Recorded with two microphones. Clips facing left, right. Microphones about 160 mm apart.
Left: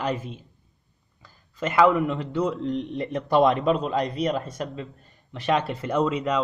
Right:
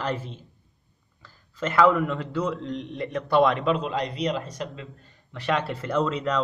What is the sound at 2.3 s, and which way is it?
Speech, 20° left (ahead or behind).